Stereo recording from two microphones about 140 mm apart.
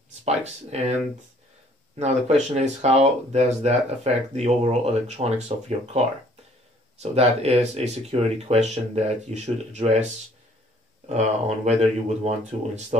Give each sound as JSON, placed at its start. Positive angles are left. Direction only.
{"t": 0.5, "sound": "speech", "side_deg": -50}
{"t": 2.0, "sound": "speech", "side_deg": -55}
{"t": 7.0, "sound": "speech", "side_deg": -50}